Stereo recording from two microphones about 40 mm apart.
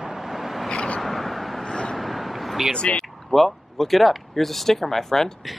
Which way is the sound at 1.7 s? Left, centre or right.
Centre.